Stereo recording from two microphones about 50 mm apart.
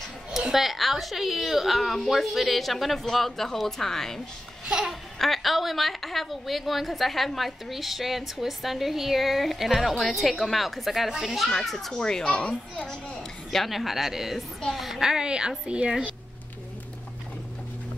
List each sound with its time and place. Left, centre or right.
0.5 s a woman's voice: centre
4.6 s babbling: centre
5.2 s a woman's voice: centre
13.5 s a woman's voice: centre; by 15.9 s right